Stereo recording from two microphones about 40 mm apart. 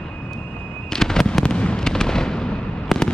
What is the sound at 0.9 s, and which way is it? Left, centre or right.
Fireworks, centre.